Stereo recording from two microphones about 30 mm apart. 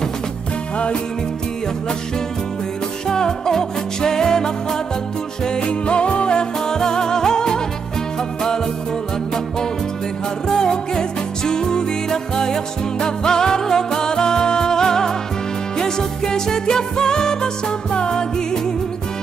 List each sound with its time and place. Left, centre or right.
3.1 s music: left
5.6 s music: left
6.3 s music: left
10.5 s music: left